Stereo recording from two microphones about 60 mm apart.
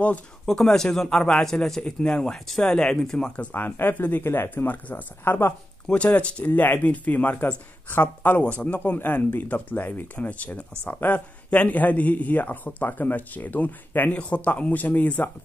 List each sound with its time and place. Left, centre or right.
0.5 s a man's voice: centre
3.5 s speech: left
6.0 s a man's voice: left